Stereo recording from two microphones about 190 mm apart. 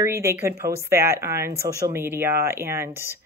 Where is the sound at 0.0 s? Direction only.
15° right (ahead or behind).